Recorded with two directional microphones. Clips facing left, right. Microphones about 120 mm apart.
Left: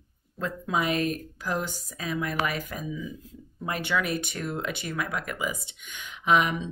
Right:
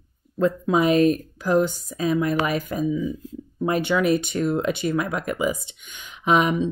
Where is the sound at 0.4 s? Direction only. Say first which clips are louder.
Right 9 dB; 30° right (ahead or behind).